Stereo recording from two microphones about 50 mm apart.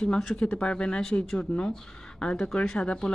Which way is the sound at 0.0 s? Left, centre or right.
Centre.